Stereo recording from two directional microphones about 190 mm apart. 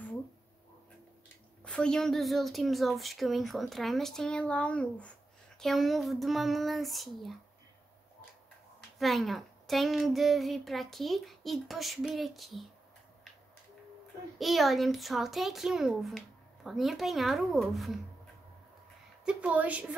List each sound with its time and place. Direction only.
1.6 s a child's voice: 5° left (ahead or behind)
8.9 s a child's voice: centre (ahead or behind)
14.4 s a child's voice: centre (ahead or behind)
19.2 s a woman's voice: 5° right (ahead or behind)